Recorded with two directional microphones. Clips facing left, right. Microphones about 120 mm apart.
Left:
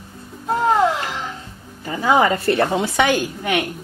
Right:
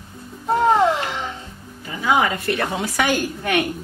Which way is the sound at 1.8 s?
35° left (ahead or behind).